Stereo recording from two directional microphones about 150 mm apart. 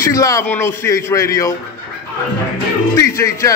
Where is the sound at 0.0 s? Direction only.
20° left (ahead or behind).